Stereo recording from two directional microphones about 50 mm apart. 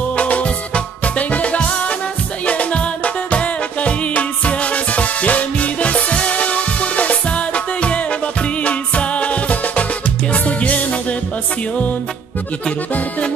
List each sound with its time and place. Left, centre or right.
0.1 s music: left